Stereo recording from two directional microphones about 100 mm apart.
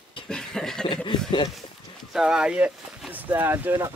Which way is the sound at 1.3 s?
50° left (ahead or behind).